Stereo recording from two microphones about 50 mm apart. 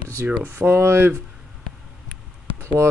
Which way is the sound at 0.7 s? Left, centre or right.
Right.